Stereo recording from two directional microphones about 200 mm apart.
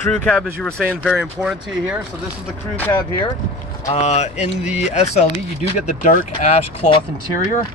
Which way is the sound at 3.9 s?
35° left (ahead or behind).